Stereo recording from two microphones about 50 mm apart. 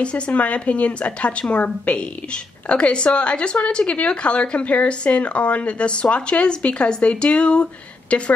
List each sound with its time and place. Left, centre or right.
0.3 s a woman's voice: left